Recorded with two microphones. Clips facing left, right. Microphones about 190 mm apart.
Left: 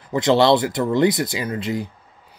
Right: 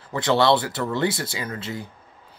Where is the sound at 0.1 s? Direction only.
20° left (ahead or behind).